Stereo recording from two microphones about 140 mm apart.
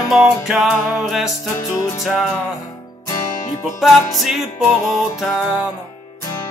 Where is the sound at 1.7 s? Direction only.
25° left (ahead or behind).